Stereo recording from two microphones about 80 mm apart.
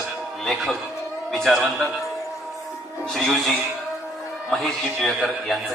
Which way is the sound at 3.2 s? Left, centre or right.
Centre.